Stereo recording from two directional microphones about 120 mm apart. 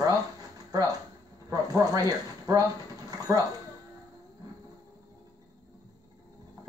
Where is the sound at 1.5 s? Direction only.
30° right (ahead or behind).